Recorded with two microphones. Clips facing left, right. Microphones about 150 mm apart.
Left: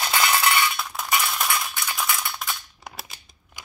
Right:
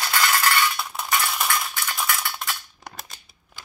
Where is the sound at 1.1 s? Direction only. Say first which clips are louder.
Even; 5° left (ahead or behind).